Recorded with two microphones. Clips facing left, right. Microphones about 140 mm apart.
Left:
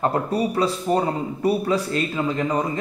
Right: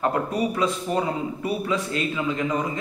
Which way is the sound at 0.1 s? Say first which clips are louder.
Left 2 dB; 35° left (ahead or behind).